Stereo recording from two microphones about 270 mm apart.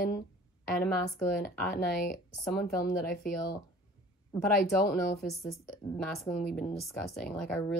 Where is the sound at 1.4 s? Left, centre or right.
Left.